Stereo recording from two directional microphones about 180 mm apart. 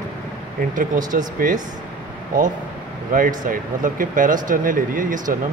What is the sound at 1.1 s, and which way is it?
Speech, 45° right (ahead or behind).